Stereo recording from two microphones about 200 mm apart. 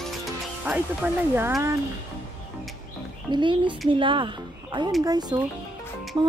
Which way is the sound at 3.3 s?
25° right (ahead or behind).